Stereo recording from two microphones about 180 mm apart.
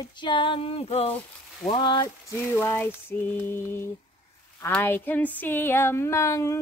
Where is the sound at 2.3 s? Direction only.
10° left (ahead or behind).